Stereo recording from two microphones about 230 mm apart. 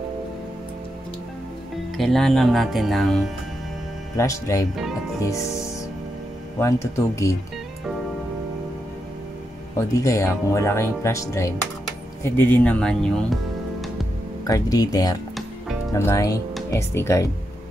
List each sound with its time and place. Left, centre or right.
2.0 s speech: centre
4.2 s speech: centre
9.8 s speech: centre
14.4 s speech: centre